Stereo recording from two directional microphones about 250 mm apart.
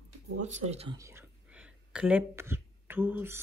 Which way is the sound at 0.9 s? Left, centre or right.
Centre.